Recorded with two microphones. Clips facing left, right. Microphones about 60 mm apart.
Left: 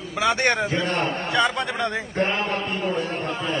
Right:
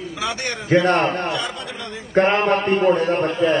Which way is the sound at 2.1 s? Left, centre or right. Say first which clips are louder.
Right 12 dB; right.